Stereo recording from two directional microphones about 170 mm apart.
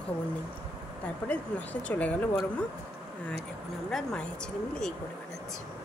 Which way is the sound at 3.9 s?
Centre (ahead or behind).